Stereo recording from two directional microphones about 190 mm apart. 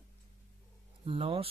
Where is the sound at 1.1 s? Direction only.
30° right (ahead or behind).